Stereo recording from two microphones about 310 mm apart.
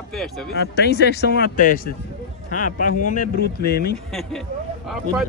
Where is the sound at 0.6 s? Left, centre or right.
Left.